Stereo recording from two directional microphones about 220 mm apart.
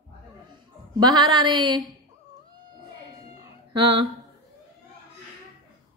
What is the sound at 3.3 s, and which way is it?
Cat, 20° right (ahead or behind).